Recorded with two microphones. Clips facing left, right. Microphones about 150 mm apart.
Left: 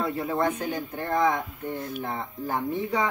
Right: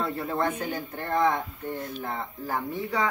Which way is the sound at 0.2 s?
15° left (ahead or behind).